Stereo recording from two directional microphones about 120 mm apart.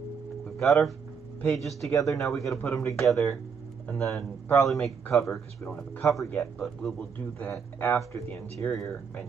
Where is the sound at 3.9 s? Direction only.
20° left (ahead or behind).